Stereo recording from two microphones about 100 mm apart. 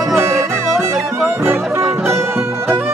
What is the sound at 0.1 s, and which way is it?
Music, 25° right (ahead or behind).